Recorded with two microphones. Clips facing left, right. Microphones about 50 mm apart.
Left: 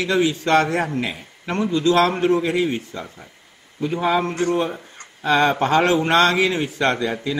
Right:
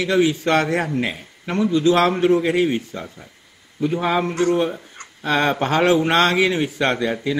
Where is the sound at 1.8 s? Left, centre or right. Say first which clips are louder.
Even; right.